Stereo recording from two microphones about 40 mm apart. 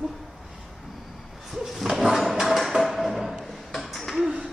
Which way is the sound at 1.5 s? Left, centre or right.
Centre.